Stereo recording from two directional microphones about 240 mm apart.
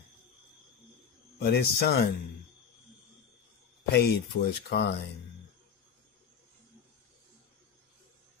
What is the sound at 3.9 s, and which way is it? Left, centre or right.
Speech, left.